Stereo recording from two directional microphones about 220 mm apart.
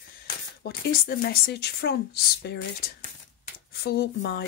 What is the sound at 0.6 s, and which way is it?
Speech, 45° left (ahead or behind).